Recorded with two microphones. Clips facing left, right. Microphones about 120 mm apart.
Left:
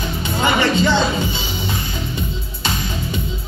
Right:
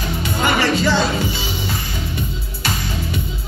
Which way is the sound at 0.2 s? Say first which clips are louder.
Left 1 dB; 25° left (ahead or behind).